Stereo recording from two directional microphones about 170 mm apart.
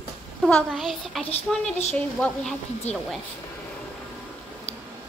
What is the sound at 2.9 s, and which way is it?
Speech, 40° left (ahead or behind).